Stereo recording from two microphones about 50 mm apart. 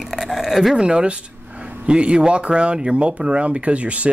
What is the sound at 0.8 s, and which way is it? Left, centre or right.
Speech, centre.